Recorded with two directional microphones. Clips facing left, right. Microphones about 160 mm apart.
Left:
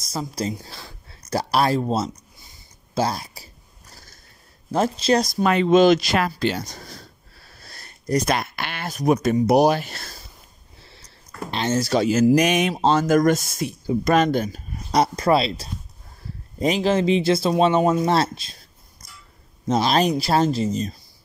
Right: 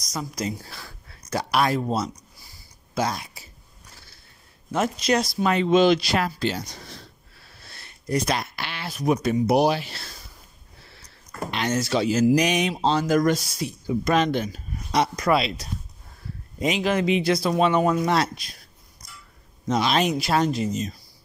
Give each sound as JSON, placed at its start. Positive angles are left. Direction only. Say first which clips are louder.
{"t": 0.0, "sound": "speech", "louder": "left 3 dB", "side_deg": 30}
{"t": 3.9, "sound": "a sound", "louder": "left 4 dB", "side_deg": 40}
{"t": 4.6, "sound": "speech", "louder": "left 3 dB", "side_deg": 30}
{"t": 5.4, "sound": "speech", "louder": "left 3 dB", "side_deg": 65}
{"t": 5.7, "sound": "speech", "louder": "left 3 dB", "side_deg": 45}
{"t": 6.1, "sound": "wheeze", "louder": "left 3 dB", "side_deg": 65}
{"t": 8.4, "sound": "speech", "louder": "left 3 dB", "side_deg": 55}
{"t": 11.5, "sound": "speech", "louder": "left 3 dB", "side_deg": 30}
{"t": 11.9, "sound": "speech", "louder": "left 3 dB", "side_deg": 50}
{"t": 19.7, "sound": "speech", "louder": "left 3 dB", "side_deg": 35}